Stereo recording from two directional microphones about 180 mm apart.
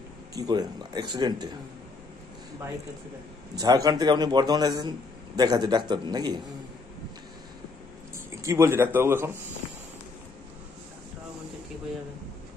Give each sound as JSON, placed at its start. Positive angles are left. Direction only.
{"t": 0.3, "sound": "a man's voice", "side_deg": -20}
{"t": 3.5, "sound": "a man's voice", "side_deg": -20}
{"t": 8.4, "sound": "speech", "side_deg": -15}